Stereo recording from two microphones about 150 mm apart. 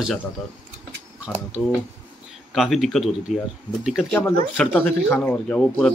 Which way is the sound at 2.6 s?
Centre (ahead or behind).